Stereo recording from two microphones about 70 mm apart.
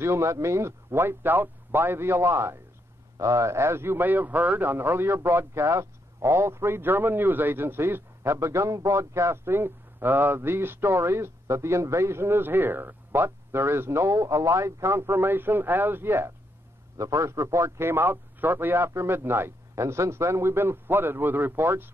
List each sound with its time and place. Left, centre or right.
0.0 s a man's voice: right
17.0 s a man's voice: right